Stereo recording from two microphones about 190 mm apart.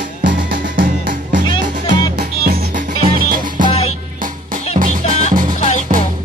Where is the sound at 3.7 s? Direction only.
35° left (ahead or behind).